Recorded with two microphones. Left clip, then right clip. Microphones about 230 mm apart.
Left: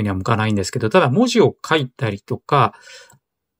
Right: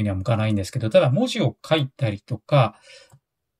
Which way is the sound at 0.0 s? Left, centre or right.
Centre.